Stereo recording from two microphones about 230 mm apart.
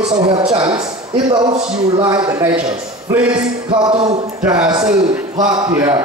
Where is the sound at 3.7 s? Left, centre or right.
Centre.